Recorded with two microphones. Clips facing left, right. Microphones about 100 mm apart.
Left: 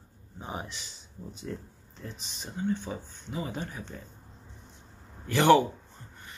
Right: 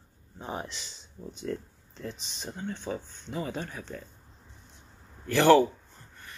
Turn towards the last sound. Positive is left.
turn(degrees=20)  # may be behind; listen again after turning